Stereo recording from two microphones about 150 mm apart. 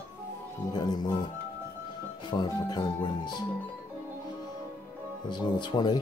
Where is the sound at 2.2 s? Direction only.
30° left (ahead or behind).